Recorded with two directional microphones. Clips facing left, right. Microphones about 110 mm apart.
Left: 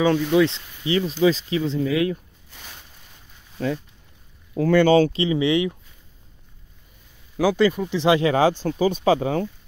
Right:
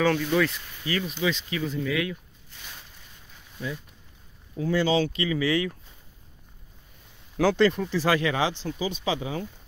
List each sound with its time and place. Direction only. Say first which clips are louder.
0.0 s speech: left 5 dB; 20° left (ahead or behind)
3.5 s speech: left 9 dB; 65° left (ahead or behind)
5.1 s speech: left 5 dB; 25° left (ahead or behind)
7.3 s speech: left 2 dB; 5° left (ahead or behind)
7.9 s speech: left 5 dB; 20° left (ahead or behind)
8.3 s speech: left 8 dB; 45° left (ahead or behind)